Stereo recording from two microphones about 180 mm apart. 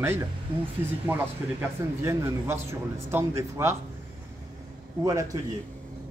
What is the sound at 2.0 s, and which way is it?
A man's voice, 15° right (ahead or behind).